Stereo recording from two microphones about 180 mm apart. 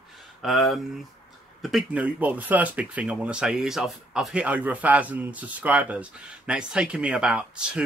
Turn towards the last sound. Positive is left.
turn(degrees=-5)  # may be behind; listen again after turning